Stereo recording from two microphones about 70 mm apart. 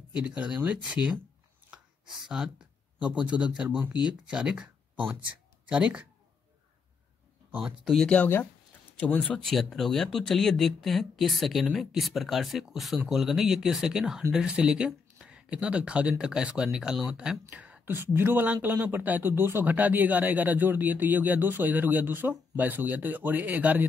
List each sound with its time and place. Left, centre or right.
0.1 s speech: centre
2.0 s speech: centre
7.6 s speech: centre
9.3 s speech: centre
17.5 s whispering: centre
17.8 s speech: right